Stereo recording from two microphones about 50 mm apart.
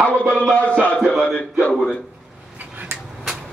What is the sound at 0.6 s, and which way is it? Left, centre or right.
Speech, left.